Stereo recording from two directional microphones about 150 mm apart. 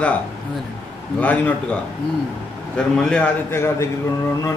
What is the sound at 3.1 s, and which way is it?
Speech, 10° left (ahead or behind).